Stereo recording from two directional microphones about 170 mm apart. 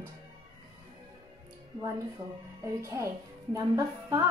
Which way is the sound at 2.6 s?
15° right (ahead or behind).